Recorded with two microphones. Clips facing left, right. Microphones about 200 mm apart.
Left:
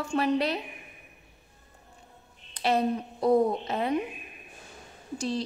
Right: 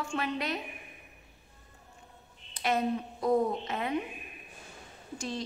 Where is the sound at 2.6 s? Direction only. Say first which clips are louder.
Left 4 dB; 35° left (ahead or behind).